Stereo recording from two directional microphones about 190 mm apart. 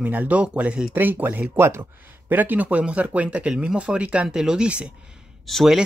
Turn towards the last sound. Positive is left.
turn(degrees=0)  # may be behind; listen again after turning